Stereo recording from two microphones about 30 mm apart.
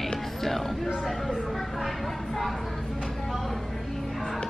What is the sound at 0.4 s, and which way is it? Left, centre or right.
Music, centre.